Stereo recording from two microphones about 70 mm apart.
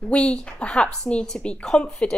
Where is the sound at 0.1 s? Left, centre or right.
Centre.